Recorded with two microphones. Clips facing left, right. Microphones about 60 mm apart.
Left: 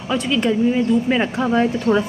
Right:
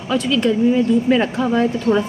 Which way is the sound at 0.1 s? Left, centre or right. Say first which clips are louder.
Right 2 dB; centre.